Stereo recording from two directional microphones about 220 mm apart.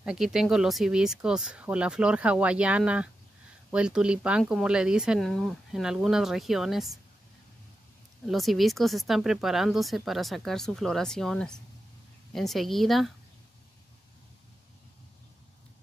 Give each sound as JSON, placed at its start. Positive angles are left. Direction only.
{"t": 0.0, "sound": "speech", "side_deg": 0}
{"t": 8.3, "sound": "speech", "side_deg": 0}